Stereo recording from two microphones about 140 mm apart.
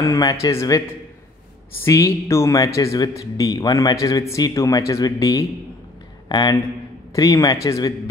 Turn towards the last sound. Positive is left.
turn(degrees=25)  # may be behind; listen again after turning